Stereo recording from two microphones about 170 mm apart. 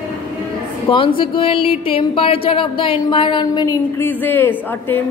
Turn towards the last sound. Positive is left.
turn(degrees=10)  # may be behind; listen again after turning